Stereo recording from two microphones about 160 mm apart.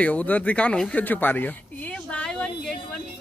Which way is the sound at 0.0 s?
10° left (ahead or behind).